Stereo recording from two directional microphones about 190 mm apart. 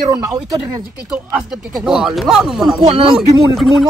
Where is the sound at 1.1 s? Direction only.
Centre (ahead or behind).